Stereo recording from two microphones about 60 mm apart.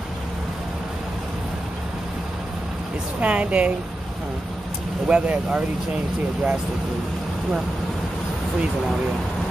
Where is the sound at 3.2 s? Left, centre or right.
Right.